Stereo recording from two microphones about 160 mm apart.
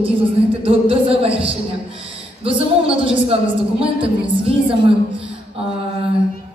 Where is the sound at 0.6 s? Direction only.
35° right (ahead or behind).